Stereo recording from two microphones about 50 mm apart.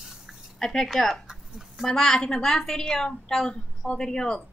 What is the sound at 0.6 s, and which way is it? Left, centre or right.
A woman's voice, centre.